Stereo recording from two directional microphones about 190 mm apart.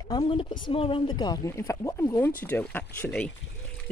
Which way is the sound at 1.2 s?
20° left (ahead or behind).